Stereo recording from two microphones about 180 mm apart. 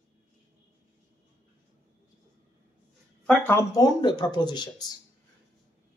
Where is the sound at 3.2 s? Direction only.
10° left (ahead or behind).